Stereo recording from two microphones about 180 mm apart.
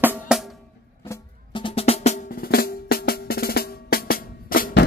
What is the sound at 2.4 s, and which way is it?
Drum, 55° left (ahead or behind).